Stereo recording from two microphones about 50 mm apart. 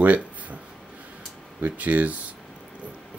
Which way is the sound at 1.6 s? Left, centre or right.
Right.